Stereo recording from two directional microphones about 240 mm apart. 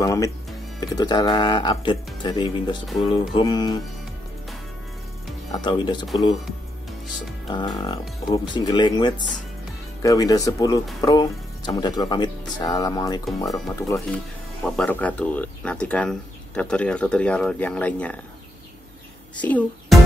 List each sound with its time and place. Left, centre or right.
0.0 s speech: centre
5.6 s speech: centre
7.4 s speech: centre
19.3 s a child's voice: centre